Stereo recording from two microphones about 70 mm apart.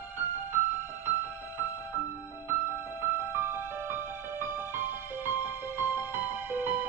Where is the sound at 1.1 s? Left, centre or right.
Right.